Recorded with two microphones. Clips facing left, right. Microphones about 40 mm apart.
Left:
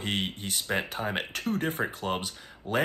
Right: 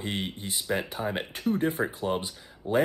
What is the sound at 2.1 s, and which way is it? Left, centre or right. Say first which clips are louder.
Speech: right 2 dB; left.